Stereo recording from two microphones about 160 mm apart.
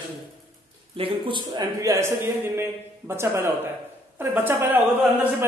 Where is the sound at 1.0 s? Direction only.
30° right (ahead or behind).